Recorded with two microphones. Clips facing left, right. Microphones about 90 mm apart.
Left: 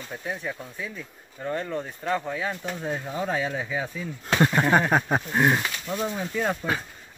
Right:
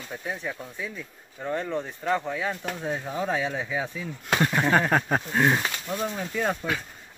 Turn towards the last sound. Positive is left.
turn(degrees=0)  # may be behind; listen again after turning